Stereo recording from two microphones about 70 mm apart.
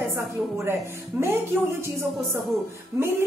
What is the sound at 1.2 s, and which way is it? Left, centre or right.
Speech, right.